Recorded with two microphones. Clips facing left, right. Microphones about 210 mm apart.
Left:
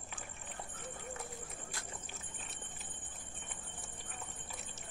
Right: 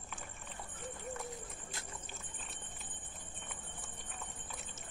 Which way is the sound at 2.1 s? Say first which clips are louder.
Even; centre (ahead or behind).